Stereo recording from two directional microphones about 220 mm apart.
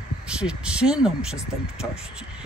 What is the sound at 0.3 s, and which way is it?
Speech, 5° right (ahead or behind).